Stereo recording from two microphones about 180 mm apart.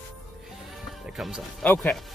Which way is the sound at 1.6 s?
10° left (ahead or behind).